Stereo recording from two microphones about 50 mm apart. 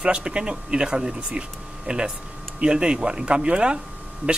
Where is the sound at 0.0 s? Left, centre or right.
Centre.